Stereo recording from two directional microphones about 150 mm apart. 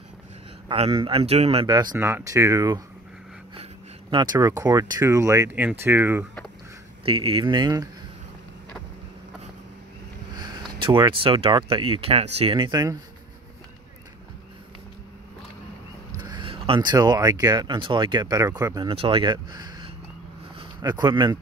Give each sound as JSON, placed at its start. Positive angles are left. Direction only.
{"t": 0.7, "sound": "speech", "side_deg": -35}
{"t": 1.7, "sound": "speech", "side_deg": -30}
{"t": 2.0, "sound": "speech", "side_deg": -15}
{"t": 4.1, "sound": "speech", "side_deg": -30}
{"t": 7.1, "sound": "speech", "side_deg": -35}
{"t": 10.4, "sound": "speech", "side_deg": -30}
{"t": 16.2, "sound": "speech", "side_deg": -30}
{"t": 18.9, "sound": "speech", "side_deg": -35}